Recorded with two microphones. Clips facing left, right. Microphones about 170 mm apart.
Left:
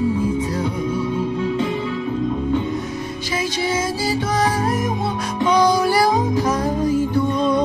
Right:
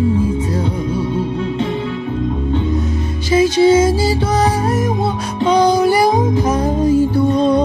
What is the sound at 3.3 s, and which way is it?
Music, 25° right (ahead or behind).